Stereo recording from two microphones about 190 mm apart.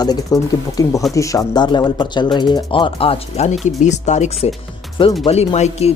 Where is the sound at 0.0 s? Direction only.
20° left (ahead or behind).